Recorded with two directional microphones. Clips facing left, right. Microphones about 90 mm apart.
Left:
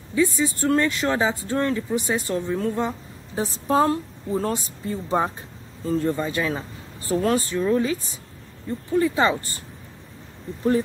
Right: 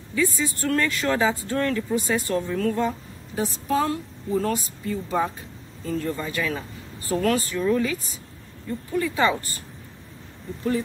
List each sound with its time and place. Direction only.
0.1 s speech: 25° left (ahead or behind)
3.5 s speech: 35° left (ahead or behind)